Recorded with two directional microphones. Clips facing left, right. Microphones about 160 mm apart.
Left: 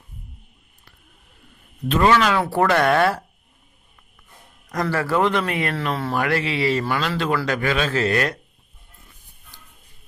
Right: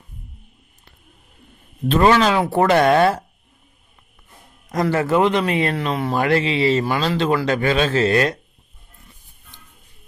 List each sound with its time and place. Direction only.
1.9 s a man's voice: 30° right (ahead or behind)
4.6 s a man's voice: 20° right (ahead or behind)
9.5 s a sound: 20° right (ahead or behind)